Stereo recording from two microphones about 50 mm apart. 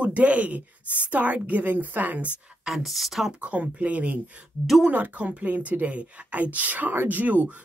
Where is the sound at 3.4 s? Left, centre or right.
Right.